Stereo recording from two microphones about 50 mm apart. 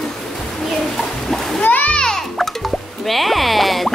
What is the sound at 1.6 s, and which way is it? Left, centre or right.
Splash, left.